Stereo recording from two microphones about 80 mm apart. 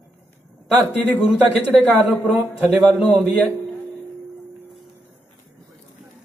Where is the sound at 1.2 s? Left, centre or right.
Centre.